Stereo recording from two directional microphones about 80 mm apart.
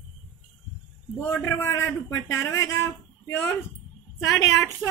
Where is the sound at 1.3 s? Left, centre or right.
Left.